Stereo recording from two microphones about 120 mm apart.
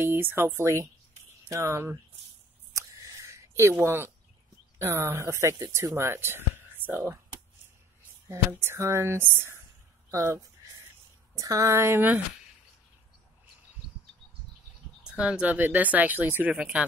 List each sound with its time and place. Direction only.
0.0 s speech: 20° right (ahead or behind)
2.7 s a sound: 25° right (ahead or behind)
3.8 s speech: 20° right (ahead or behind)
8.3 s speech: 20° right (ahead or behind)
15.0 s speech: 10° right (ahead or behind)